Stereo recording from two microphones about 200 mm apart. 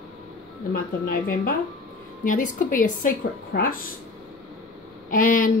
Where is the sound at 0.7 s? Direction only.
45° left (ahead or behind).